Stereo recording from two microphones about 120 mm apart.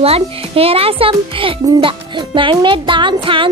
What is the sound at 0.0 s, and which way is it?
A child's voice, 55° right (ahead or behind).